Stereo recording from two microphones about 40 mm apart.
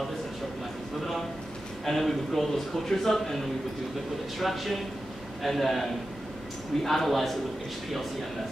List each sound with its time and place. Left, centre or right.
1.9 s speech: centre
4.4 s a man's voice: centre